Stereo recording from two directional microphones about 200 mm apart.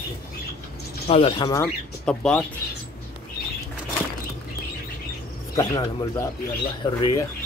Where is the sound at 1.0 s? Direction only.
30° left (ahead or behind).